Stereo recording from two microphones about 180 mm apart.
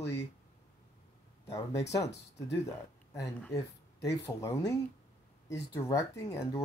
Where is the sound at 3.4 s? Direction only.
15° left (ahead or behind).